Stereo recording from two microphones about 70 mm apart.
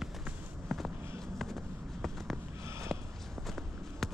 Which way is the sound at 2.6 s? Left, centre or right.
Right.